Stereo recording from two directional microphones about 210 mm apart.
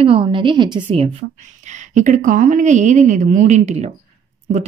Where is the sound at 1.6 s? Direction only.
35° right (ahead or behind).